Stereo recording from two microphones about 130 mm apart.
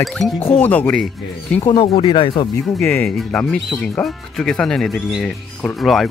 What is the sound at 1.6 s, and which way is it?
Speech, 40° left (ahead or behind).